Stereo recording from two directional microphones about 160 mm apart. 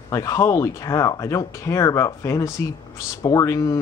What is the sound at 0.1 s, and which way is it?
Speech, 20° left (ahead or behind).